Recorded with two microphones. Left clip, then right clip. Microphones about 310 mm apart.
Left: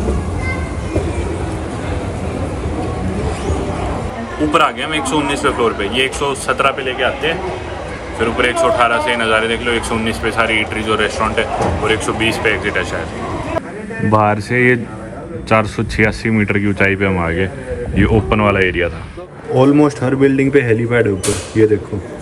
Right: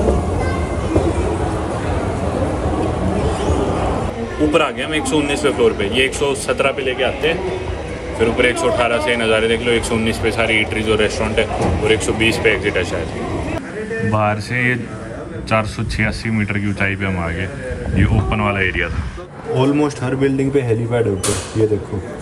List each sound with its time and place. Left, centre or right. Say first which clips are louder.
0.0 s train: right 3 dB; right
2.3 s vehicle: right 4 dB; right
4.4 s speech: left 2 dB; centre
14.1 s speech: left 6 dB; centre